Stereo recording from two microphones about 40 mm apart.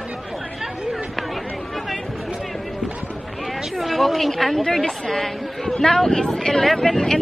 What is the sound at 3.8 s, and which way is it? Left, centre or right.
A woman's voice, centre.